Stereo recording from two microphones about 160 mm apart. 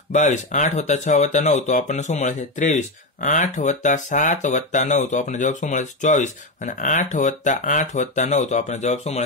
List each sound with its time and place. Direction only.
0.1 s speech: 50° left (ahead or behind)